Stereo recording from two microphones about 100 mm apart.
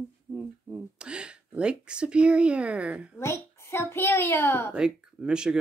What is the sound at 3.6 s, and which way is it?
A child's voice, 25° left (ahead or behind).